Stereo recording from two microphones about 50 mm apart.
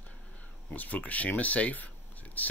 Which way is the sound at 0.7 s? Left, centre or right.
Left.